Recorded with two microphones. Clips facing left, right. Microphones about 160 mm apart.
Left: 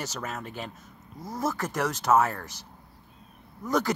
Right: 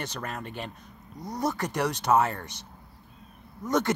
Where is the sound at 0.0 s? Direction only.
5° left (ahead or behind).